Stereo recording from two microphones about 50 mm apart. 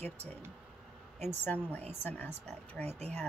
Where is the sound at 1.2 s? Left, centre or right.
Left.